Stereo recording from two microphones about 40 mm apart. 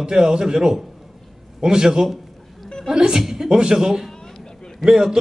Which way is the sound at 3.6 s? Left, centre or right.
Right.